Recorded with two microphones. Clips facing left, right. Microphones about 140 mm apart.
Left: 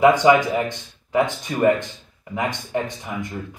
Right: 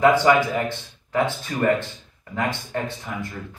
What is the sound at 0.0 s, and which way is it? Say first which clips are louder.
Speech: left 2 dB; 15° left (ahead or behind).